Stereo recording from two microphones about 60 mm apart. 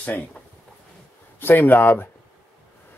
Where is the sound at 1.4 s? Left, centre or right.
Left.